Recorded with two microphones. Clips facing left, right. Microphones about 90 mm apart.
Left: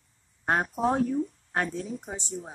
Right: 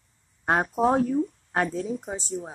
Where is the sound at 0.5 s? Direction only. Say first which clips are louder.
Right 4 dB; 20° right (ahead or behind).